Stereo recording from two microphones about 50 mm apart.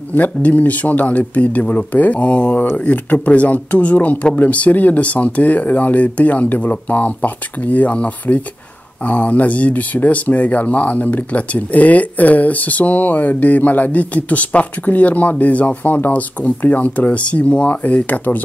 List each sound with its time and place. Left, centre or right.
0.1 s speech: left